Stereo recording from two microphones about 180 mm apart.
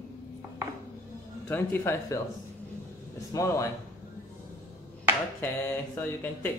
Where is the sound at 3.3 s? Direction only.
15° left (ahead or behind).